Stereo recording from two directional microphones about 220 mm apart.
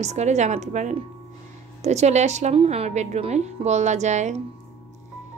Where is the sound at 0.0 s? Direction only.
30° right (ahead or behind).